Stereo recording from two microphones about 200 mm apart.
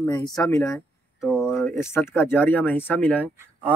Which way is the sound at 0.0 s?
20° left (ahead or behind).